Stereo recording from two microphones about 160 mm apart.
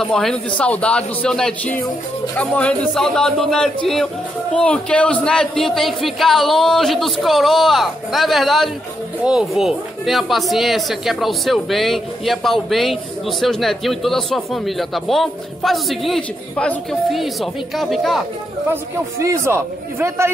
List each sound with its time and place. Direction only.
0.0 s speech: 5° left (ahead or behind)
19.2 s a man's voice: 15° right (ahead or behind)